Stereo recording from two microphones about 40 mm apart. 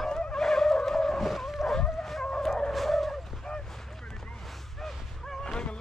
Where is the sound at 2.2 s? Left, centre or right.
Centre.